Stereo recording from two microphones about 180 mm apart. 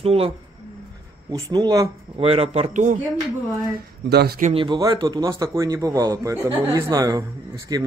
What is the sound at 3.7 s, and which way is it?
Speech, 60° right (ahead or behind).